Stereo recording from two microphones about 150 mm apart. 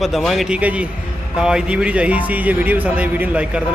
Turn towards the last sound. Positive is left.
turn(degrees=-10)  # may be behind; listen again after turning